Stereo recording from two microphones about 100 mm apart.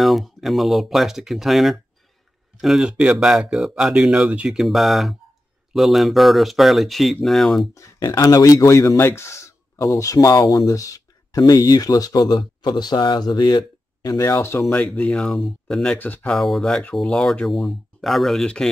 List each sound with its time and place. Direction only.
0.0 s speech: centre (ahead or behind)
7.7 s speech: 35° left (ahead or behind)
14.7 s speech: 10° left (ahead or behind)
16.3 s speech: centre (ahead or behind)